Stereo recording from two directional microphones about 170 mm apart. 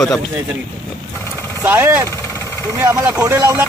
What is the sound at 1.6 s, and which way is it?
Speech, 15° right (ahead or behind).